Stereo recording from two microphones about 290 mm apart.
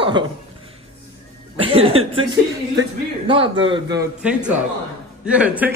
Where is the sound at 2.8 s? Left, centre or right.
Centre.